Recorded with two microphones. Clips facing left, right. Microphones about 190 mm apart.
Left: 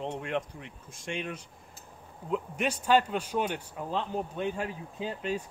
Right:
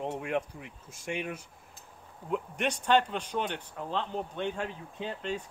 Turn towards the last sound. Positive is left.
turn(degrees=5)  # may be behind; listen again after turning